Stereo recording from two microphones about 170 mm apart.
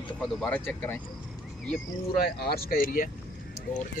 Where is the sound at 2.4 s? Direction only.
60° left (ahead or behind).